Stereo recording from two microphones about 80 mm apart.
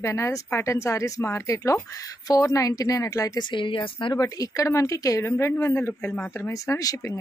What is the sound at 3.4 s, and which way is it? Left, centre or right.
Speech, left.